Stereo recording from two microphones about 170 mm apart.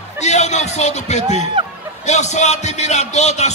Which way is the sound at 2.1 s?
45° left (ahead or behind).